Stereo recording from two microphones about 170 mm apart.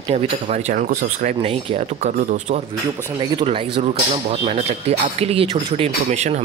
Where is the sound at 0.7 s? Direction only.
50° right (ahead or behind).